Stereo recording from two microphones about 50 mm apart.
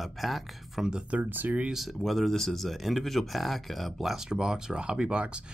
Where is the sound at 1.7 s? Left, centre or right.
Centre.